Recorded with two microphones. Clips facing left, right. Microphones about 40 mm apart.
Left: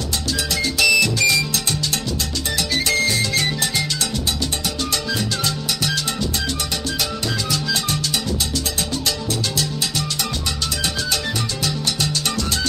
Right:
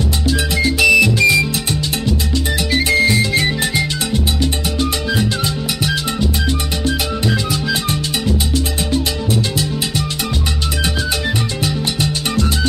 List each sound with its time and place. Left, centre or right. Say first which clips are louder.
0.3 s music: right 6 dB; centre
2.7 s music: right 6 dB; right
11.6 s music: right 3 dB; right